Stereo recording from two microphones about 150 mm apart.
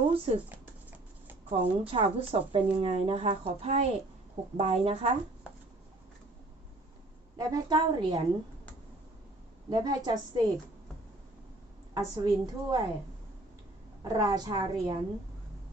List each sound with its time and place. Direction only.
0.1 s speech: 40° right (ahead or behind)
1.5 s speech: 40° right (ahead or behind)
7.3 s a woman's voice: 25° right (ahead or behind)
9.7 s a woman's voice: 30° right (ahead or behind)
11.9 s a woman's voice: 25° right (ahead or behind)
14.0 s a woman's voice: 25° right (ahead or behind)